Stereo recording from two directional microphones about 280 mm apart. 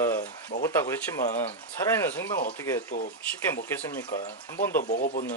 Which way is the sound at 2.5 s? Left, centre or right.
Centre.